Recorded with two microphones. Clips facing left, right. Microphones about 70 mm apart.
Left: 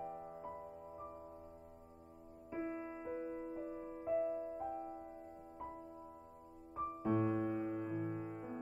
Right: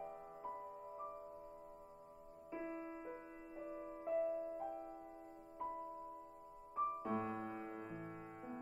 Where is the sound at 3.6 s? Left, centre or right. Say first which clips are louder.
Left 3 dB; centre.